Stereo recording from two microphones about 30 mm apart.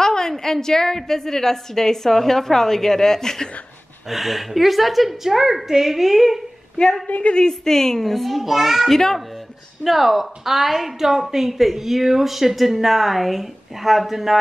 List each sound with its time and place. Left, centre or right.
0.0 s a woman's voice: centre
4.1 s a woman's voice: centre
7.1 s a woman's voice: left
7.3 s a woman's voice: centre
8.1 s a woman's voice: centre
8.9 s a woman's voice: centre
9.8 s a woman's voice: centre